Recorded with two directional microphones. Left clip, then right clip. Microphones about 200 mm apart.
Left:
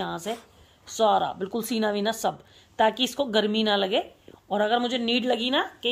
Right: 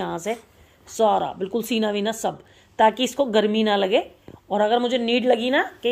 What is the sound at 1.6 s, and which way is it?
Speech, 30° left (ahead or behind).